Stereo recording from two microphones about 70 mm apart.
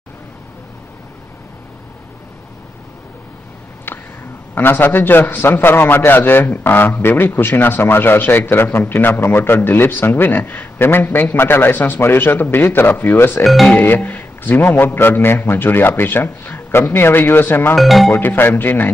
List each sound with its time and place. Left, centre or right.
4.6 s a man's voice: left
13.4 s speech: centre
13.7 s a man's voice: left
17.7 s speech: centre
18.2 s speech: left